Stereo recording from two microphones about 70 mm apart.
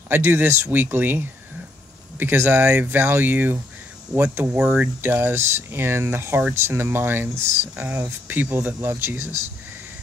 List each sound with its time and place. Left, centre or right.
0.1 s speech: right
4.5 s speech: centre
5.0 s speech: right
7.8 s speech: centre
8.3 s speech: right